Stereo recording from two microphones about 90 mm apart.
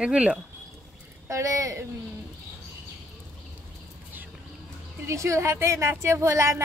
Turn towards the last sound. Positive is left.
turn(degrees=-35)  # may be behind; listen again after turning